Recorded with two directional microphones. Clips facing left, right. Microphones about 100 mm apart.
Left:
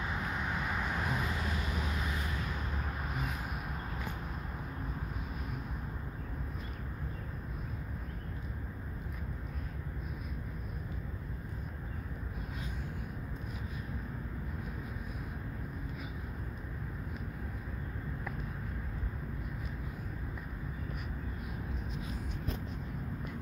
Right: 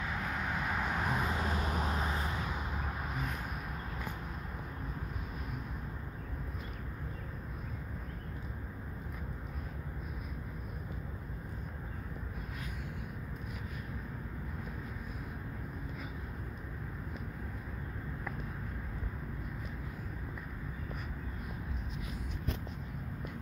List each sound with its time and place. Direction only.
0.0 s vehicle: 15° left (ahead or behind); by 1.1 s 5° right (ahead or behind)
1.1 s vehicle: 25° right (ahead or behind)
3.1 s vehicle: 5° left (ahead or behind)